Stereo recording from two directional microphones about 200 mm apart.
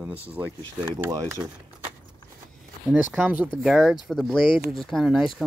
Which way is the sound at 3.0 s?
10° right (ahead or behind).